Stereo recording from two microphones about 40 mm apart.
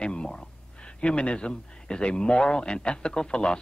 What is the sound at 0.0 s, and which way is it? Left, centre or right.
A man's voice, left.